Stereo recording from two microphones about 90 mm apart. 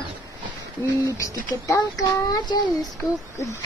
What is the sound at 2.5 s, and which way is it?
Speech, 50° left (ahead or behind).